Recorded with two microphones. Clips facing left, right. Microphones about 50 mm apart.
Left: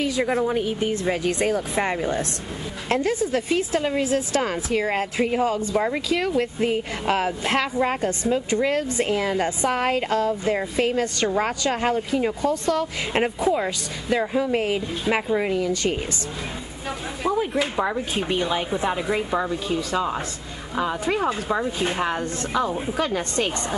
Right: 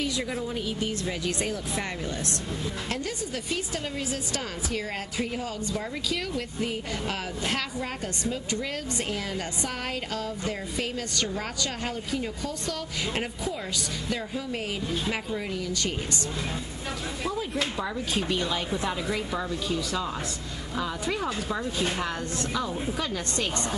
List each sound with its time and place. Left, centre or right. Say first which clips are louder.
0.0 s a sound: left 7 dB; left
0.4 s speech: left 8 dB; left
17.7 s speech: left 5 dB; left